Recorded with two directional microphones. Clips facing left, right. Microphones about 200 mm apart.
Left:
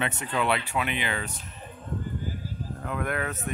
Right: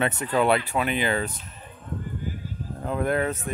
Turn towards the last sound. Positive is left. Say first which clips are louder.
# right 6 dB
turn(degrees=-30)  # may be behind; listen again after turning